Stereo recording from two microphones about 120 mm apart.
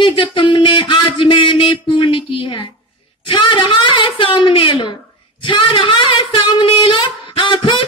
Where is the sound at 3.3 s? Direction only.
40° left (ahead or behind).